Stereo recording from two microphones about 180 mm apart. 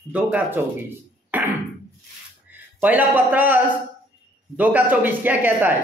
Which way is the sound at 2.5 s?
10° right (ahead or behind).